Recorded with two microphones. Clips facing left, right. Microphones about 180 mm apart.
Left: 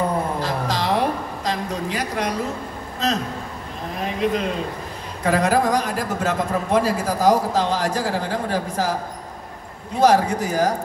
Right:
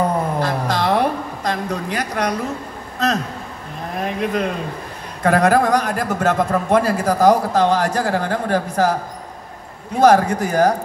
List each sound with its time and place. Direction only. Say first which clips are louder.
0.4 s a sound: right 4 dB; 55° right (ahead or behind)
4.0 s a man's voice: right 1 dB; 50° right (ahead or behind)
10.0 s speech: right 3 dB; 55° right (ahead or behind)